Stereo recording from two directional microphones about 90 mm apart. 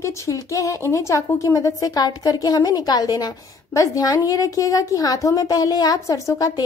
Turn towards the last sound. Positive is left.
turn(degrees=40)  # may be behind; listen again after turning